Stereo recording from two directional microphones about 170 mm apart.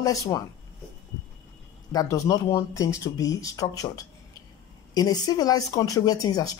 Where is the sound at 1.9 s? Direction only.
20° left (ahead or behind).